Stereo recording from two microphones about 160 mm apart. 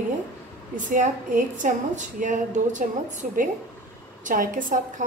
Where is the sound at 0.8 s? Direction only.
55° right (ahead or behind).